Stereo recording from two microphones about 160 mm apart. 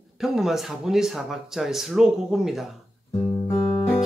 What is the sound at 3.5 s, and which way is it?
Music, 30° left (ahead or behind).